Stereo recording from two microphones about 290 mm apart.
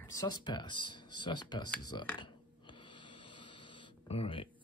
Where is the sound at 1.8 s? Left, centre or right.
Centre.